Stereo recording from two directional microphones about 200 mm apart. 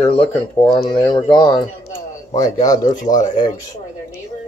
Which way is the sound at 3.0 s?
40° left (ahead or behind).